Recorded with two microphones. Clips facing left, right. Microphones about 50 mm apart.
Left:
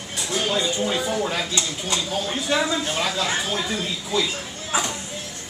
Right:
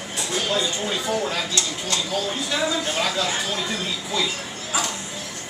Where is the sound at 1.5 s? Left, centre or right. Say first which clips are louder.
Even; centre.